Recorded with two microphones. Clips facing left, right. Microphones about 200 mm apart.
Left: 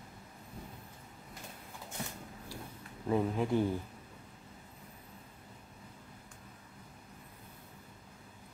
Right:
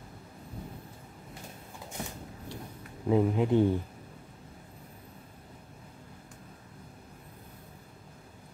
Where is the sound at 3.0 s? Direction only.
15° right (ahead or behind).